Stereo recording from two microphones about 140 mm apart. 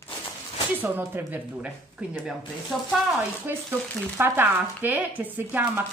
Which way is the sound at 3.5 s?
15° right (ahead or behind).